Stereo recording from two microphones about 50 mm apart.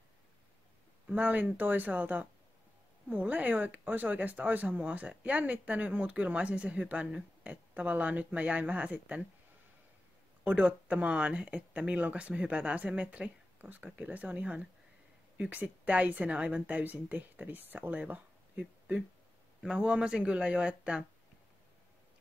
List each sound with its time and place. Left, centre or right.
1.0 s speech: right
10.4 s speech: right
13.6 s speech: right